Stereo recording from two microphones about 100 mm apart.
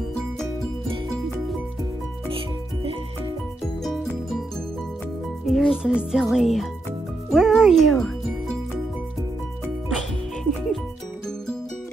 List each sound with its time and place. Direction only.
2.3 s music: 65° right (ahead or behind)
5.5 s a child's voice: centre (ahead or behind)
9.8 s music: centre (ahead or behind)